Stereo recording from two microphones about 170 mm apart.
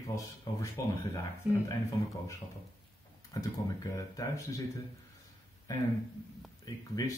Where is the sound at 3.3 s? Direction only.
20° left (ahead or behind).